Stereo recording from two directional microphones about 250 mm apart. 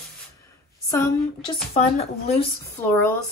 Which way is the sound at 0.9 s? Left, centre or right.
Centre.